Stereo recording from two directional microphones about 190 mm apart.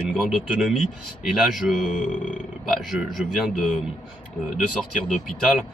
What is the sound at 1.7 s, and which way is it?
Speech, 40° left (ahead or behind).